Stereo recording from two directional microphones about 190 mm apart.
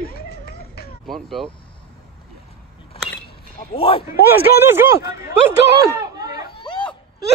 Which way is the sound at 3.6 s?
30° left (ahead or behind).